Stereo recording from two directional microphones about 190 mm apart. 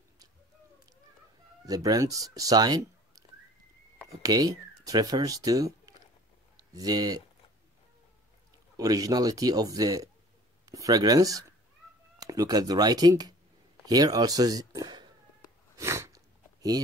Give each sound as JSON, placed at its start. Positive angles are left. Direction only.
{"t": 1.7, "sound": "speech", "side_deg": -20}
{"t": 8.7, "sound": "speech", "side_deg": -20}
{"t": 15.8, "sound": "a sound", "side_deg": -15}